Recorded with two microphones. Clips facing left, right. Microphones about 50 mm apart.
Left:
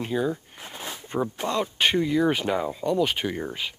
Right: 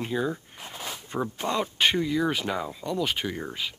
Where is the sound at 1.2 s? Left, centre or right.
Centre.